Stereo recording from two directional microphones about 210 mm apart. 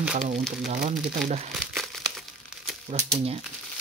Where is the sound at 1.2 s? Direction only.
Centre (ahead or behind).